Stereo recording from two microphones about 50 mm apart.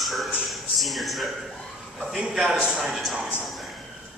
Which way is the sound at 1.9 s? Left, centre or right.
Centre.